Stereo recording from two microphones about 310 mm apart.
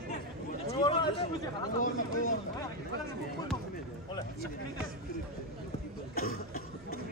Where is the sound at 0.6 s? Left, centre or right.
Centre.